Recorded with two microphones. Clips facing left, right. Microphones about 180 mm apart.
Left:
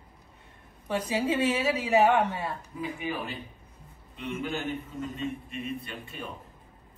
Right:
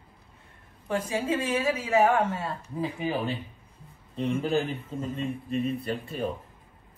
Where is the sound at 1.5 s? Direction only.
15° left (ahead or behind).